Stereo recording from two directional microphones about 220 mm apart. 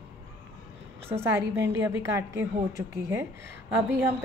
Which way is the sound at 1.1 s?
10° right (ahead or behind).